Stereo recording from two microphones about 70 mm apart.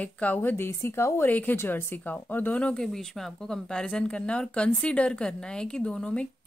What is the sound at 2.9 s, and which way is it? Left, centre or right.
A woman's voice, centre.